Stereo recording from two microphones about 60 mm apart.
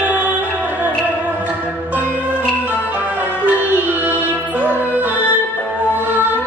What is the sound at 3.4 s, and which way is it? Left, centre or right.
Music, right.